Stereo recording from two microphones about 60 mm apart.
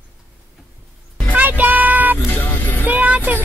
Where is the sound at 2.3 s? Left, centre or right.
Left.